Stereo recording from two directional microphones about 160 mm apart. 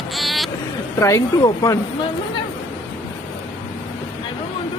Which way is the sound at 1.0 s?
20° left (ahead or behind).